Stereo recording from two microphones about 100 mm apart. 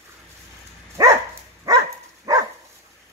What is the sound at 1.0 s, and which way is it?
Dog, 35° right (ahead or behind).